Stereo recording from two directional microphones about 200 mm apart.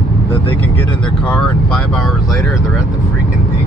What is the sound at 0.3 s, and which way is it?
Speech, 10° left (ahead or behind).